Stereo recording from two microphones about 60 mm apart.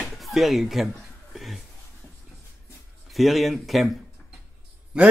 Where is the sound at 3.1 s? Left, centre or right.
Centre.